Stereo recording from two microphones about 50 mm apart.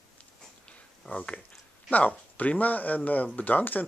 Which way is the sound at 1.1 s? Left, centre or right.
Left.